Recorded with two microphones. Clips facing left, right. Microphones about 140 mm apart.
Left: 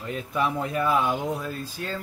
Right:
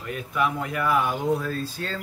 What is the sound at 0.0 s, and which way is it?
Speech, 25° left (ahead or behind).